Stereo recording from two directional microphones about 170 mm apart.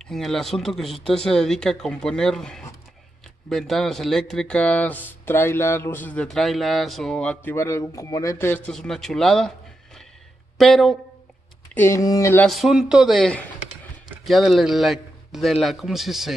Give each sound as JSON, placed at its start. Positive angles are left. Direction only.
{"t": 0.0, "sound": "speech", "side_deg": 0}
{"t": 10.6, "sound": "speech", "side_deg": 0}
{"t": 11.7, "sound": "speech", "side_deg": 15}
{"t": 12.4, "sound": "speech", "side_deg": 0}